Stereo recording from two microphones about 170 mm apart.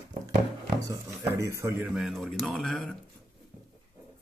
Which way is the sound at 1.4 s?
15° right (ahead or behind).